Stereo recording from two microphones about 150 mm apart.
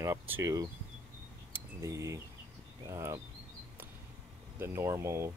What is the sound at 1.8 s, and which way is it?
Speech, 20° right (ahead or behind).